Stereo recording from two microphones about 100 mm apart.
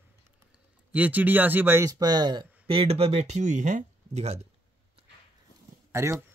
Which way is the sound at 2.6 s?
75° right (ahead or behind).